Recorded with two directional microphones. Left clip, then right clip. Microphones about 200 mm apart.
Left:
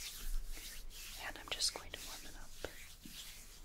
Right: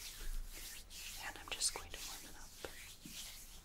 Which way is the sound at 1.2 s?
50° left (ahead or behind).